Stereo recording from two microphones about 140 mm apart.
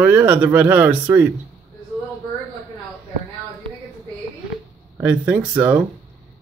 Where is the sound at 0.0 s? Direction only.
15° right (ahead or behind).